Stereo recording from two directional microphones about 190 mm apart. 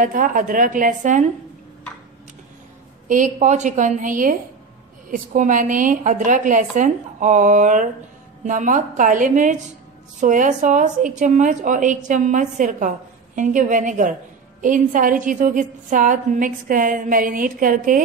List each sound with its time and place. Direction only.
0.0 s a woman's voice: 45° right (ahead or behind)
3.1 s a woman's voice: 40° right (ahead or behind)